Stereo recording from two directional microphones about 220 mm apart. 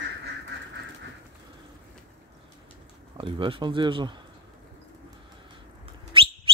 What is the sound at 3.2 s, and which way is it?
Speech, 25° right (ahead or behind).